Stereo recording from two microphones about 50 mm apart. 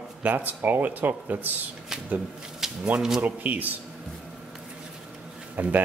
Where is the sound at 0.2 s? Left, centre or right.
Right.